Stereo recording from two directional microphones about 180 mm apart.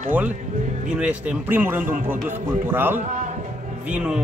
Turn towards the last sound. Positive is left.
turn(degrees=-5)  # may be behind; listen again after turning